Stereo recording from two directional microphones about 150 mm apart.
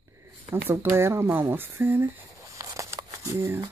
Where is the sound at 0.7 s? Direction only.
15° right (ahead or behind).